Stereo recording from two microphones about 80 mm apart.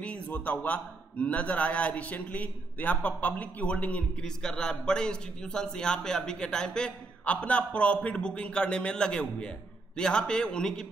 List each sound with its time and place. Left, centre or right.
0.0 s a man's voice: centre